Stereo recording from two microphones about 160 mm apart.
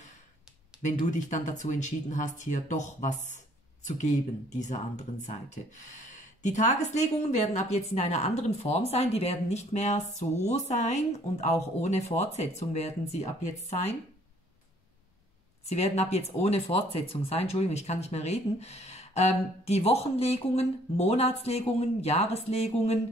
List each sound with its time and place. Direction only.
0.8 s speech: 50° left (ahead or behind)
15.6 s speech: 45° left (ahead or behind)